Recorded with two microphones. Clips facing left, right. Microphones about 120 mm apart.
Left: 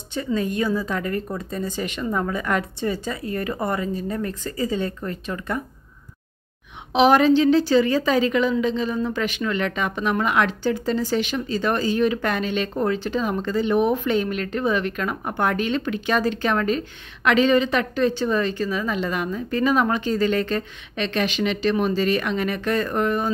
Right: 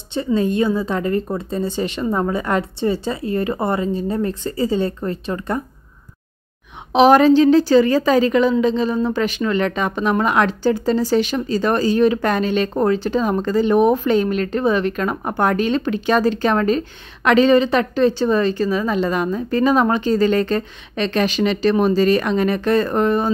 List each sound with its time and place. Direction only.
0.1 s speech: 30° right (ahead or behind)
6.9 s a woman's voice: 40° right (ahead or behind)